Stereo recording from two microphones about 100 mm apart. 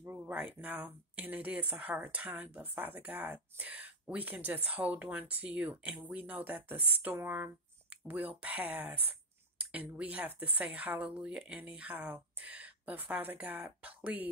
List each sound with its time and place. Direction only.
0.0 s speech: 15° right (ahead or behind)